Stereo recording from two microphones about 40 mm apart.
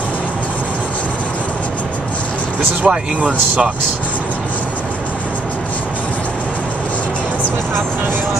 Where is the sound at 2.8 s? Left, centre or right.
Centre.